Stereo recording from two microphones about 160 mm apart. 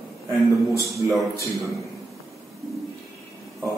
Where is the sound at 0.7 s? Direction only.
Centre (ahead or behind).